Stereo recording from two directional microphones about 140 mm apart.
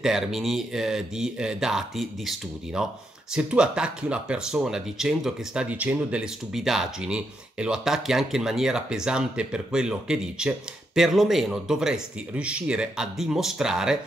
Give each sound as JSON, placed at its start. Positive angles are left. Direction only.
{"t": 0.0, "sound": "speech", "side_deg": 0}